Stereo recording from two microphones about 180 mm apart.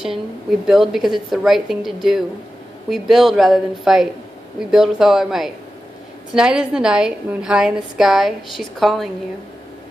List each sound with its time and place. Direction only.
0.0 s a woman's voice: centre (ahead or behind)